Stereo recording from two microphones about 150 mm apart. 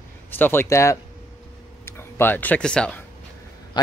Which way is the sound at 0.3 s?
15° left (ahead or behind).